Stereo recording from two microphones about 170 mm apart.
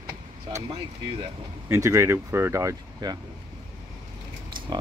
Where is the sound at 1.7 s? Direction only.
15° right (ahead or behind).